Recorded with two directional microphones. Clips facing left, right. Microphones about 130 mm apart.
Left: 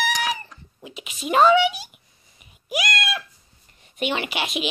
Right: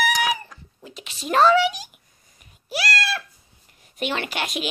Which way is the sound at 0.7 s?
5° left (ahead or behind).